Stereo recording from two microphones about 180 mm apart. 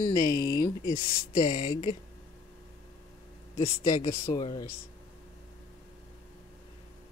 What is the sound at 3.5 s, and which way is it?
Speech, 20° left (ahead or behind).